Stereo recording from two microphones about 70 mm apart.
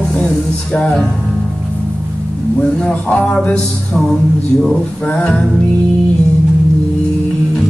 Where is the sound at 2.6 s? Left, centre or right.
Centre.